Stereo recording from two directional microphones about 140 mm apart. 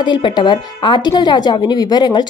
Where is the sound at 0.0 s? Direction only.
35° left (ahead or behind).